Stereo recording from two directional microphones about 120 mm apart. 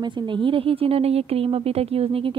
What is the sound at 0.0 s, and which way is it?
Speech, 40° right (ahead or behind).